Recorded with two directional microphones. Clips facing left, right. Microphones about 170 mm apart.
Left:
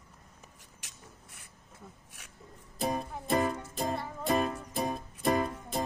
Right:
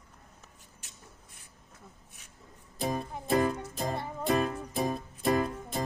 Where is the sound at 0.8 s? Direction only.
90° left.